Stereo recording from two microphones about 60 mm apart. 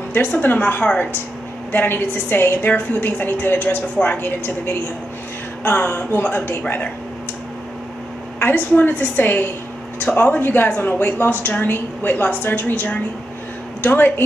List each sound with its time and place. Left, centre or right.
0.1 s a woman's voice: left
2.6 s a woman's voice: left
8.4 s a woman's voice: left